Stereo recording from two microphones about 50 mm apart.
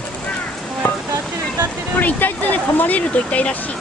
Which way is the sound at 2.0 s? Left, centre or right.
Left.